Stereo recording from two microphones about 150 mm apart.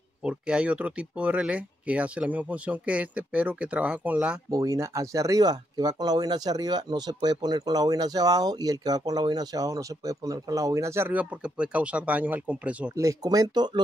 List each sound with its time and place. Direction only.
0.2 s speech: 5° right (ahead or behind)
4.5 s speech: 20° right (ahead or behind)
12.9 s speech: 25° right (ahead or behind)